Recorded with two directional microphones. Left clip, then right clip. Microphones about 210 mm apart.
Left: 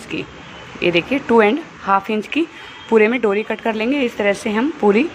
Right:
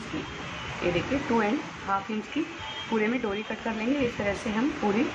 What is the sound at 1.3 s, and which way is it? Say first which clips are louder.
A woman's voice: left 16 dB; 45° left (ahead or behind).